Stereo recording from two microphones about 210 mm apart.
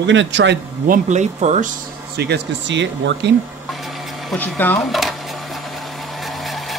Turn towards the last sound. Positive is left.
turn(degrees=0)  # may be behind; listen again after turning